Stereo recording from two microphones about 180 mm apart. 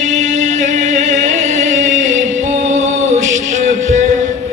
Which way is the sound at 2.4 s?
40° right (ahead or behind).